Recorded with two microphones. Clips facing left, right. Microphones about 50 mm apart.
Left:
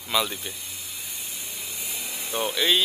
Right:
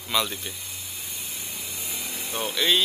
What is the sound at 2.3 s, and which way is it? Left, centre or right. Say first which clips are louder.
Speech: left 1 dB; centre.